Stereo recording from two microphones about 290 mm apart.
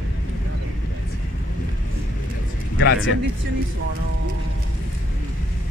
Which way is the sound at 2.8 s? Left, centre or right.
Left.